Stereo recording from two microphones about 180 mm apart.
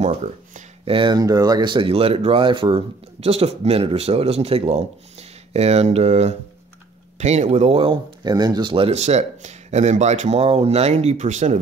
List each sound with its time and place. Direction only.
0.8 s speech: 25° right (ahead or behind)